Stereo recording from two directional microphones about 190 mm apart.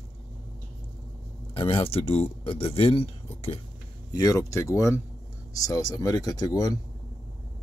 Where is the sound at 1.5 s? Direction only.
30° left (ahead or behind).